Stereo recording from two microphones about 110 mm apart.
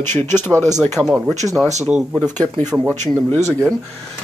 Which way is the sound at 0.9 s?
5° right (ahead or behind).